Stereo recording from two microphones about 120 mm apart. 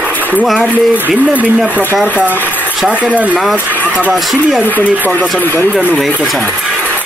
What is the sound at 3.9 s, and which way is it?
Speech, 10° right (ahead or behind).